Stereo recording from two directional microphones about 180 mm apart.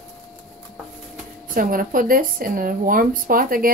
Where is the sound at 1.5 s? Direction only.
50° right (ahead or behind).